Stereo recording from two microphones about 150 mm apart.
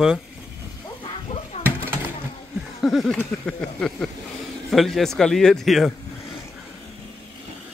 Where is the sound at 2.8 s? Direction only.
Centre (ahead or behind).